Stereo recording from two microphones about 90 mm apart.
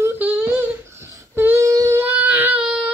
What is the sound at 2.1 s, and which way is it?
Baby cry, 15° right (ahead or behind).